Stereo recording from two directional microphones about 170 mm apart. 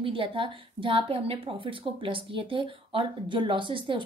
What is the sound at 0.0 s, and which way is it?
A woman's voice, 30° right (ahead or behind).